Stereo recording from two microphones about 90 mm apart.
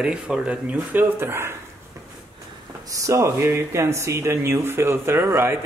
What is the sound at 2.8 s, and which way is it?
Speech, 35° right (ahead or behind).